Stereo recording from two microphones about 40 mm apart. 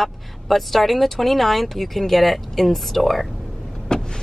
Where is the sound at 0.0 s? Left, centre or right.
Centre.